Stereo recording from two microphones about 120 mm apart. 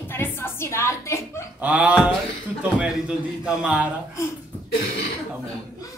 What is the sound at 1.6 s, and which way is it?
A man's voice, 15° right (ahead or behind).